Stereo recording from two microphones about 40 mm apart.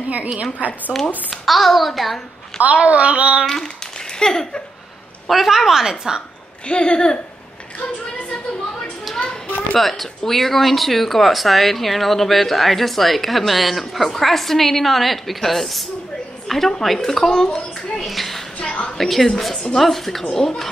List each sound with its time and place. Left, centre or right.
0.9 s speech: centre
1.4 s speech: centre
2.6 s a sound: right
4.2 s a woman's voice: centre
5.3 s a woman's voice: centre
6.7 s speech: left
9.8 s speech: centre
16.4 s a sound: centre
16.8 s a woman's voice: centre
18.0 s a woman's voice: centre